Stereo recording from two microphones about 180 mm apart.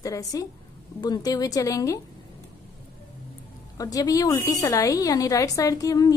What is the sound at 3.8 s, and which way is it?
A woman's voice, 20° left (ahead or behind).